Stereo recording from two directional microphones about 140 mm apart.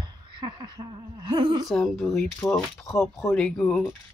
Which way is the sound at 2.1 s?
15° left (ahead or behind).